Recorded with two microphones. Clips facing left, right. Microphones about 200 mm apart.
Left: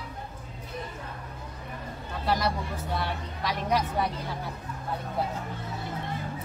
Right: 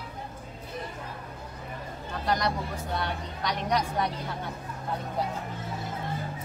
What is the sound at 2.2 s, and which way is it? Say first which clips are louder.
Vehicle: left 1 dB; 5° left (ahead or behind).